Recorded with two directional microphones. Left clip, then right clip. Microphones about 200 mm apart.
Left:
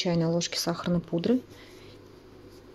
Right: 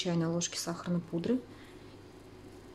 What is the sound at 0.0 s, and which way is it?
Speech, 20° left (ahead or behind).